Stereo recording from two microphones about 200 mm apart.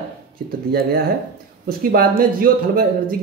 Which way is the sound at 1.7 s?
50° right (ahead or behind).